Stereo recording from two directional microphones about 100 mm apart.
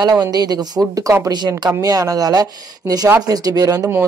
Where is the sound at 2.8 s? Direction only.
25° right (ahead or behind).